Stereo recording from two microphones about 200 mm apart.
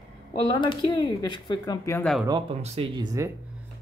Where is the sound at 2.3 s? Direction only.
30° right (ahead or behind).